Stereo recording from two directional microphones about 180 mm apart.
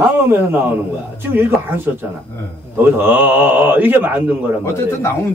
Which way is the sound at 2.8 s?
10° right (ahead or behind).